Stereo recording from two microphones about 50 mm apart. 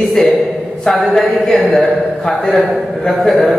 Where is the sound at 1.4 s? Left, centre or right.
Centre.